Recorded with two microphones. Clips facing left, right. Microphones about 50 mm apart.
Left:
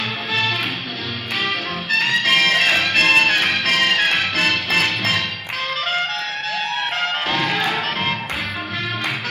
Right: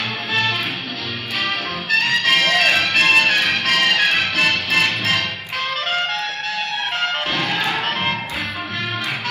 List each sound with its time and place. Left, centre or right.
0.3 s music: right
2.3 s music: left
4.4 s music: left
7.0 s music: left